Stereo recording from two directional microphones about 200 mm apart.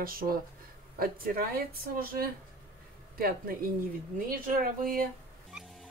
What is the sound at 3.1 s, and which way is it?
Speech, 45° right (ahead or behind).